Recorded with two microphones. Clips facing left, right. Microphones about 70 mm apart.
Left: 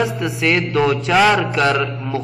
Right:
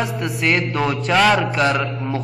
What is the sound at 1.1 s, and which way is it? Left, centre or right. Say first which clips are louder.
Mantra: even; centre.